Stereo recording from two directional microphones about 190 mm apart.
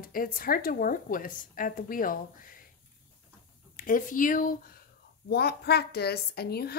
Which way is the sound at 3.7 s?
45° left (ahead or behind).